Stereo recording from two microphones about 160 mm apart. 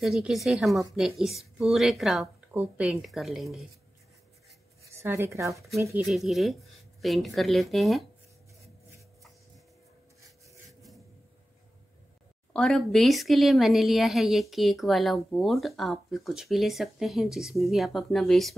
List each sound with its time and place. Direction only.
0.0 s a woman's voice: centre (ahead or behind)
4.9 s speech: 15° right (ahead or behind)
6.0 s a woman's voice: centre (ahead or behind)
12.5 s a woman's voice: 5° left (ahead or behind)